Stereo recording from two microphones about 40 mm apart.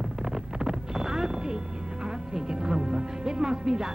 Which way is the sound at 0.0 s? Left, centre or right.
Centre.